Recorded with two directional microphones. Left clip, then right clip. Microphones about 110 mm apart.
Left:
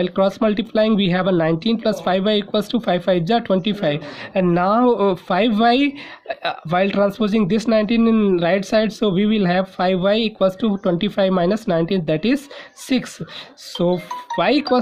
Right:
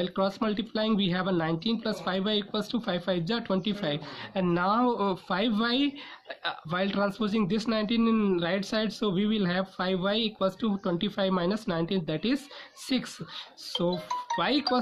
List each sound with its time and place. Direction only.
0.0 s speech: 45° left (ahead or behind)